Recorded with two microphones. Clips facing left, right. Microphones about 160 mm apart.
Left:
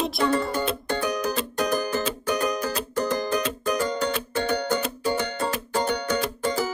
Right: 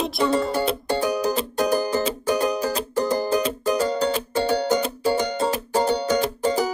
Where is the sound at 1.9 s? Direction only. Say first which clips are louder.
Right 4 dB; 35° right (ahead or behind).